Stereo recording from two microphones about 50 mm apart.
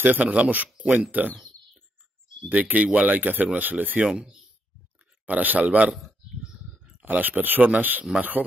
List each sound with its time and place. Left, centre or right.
0.2 s speech: right
2.5 s speech: right
4.1 s speech: centre
5.2 s speech: right
5.9 s speech: centre
6.4 s speech: right